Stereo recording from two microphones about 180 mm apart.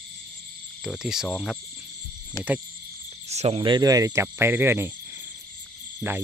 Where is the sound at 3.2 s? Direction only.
35° right (ahead or behind); by 4.9 s 10° right (ahead or behind).